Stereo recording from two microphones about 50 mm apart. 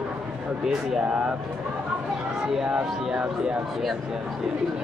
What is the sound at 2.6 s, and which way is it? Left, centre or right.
Speech, centre.